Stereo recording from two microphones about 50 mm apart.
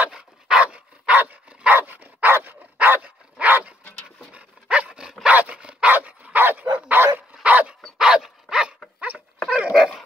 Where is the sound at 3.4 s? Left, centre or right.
Right.